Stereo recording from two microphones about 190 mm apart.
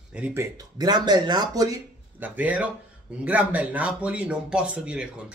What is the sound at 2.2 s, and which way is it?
Speech, 10° right (ahead or behind).